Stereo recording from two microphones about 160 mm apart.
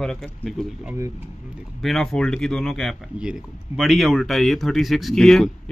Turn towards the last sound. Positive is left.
turn(degrees=0)  # may be behind; listen again after turning